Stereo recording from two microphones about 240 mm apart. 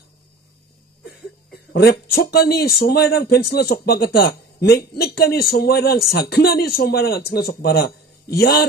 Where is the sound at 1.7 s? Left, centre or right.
Left.